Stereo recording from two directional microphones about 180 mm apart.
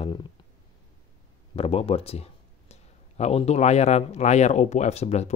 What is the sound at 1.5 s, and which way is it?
A man's voice, 35° left (ahead or behind).